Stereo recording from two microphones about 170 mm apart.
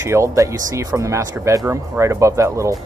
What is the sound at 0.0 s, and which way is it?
Speech, 15° right (ahead or behind).